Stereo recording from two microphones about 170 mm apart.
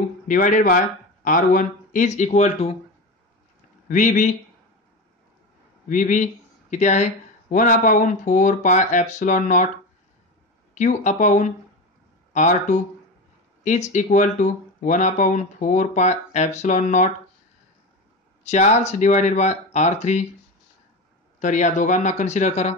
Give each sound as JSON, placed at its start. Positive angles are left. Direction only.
{"t": 0.3, "sound": "speech", "side_deg": 50}
{"t": 3.9, "sound": "speech", "side_deg": 45}
{"t": 5.9, "sound": "speech", "side_deg": 50}
{"t": 10.7, "sound": "speech", "side_deg": 45}
{"t": 18.4, "sound": "speech", "side_deg": 40}
{"t": 21.4, "sound": "speech", "side_deg": 45}